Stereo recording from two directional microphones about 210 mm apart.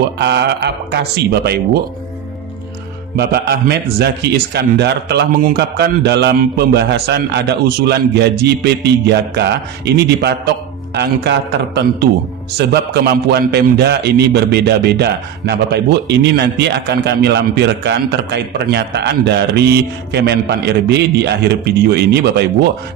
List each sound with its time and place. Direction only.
0.2 s a man's voice: 50° right (ahead or behind)
3.2 s a man's voice: 50° right (ahead or behind)